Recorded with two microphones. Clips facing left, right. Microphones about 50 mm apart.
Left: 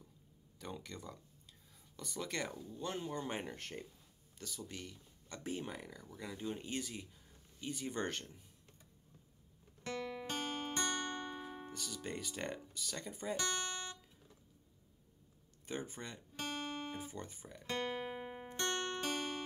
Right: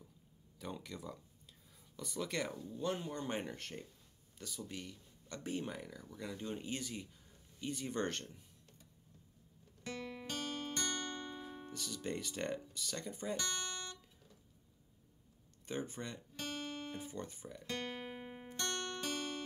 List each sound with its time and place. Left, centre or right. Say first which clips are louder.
0.6 s speech: right 1 dB; centre
10.2 s music: left 1 dB; centre
12.7 s speech: right 1 dB; centre
13.5 s music: left 2 dB; centre
15.6 s speech: right 2 dB; centre
16.3 s guitar: left 2 dB; left
17.0 s speech: right 2 dB; centre
17.6 s music: left 4 dB; centre
18.6 s music: left 3 dB; left